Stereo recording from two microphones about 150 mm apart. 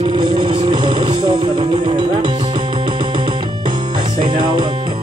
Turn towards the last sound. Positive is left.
turn(degrees=-30)  # may be behind; listen again after turning